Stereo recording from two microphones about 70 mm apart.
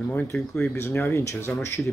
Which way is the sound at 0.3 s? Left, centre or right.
Left.